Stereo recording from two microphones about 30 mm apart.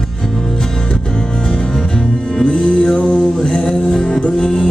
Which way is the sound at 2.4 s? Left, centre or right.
Left.